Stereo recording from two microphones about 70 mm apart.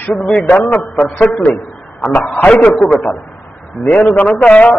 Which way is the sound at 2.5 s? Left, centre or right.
Centre.